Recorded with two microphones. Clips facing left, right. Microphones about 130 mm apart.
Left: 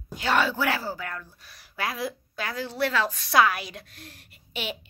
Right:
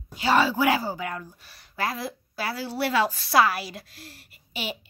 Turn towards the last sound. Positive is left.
turn(degrees=-5)  # may be behind; listen again after turning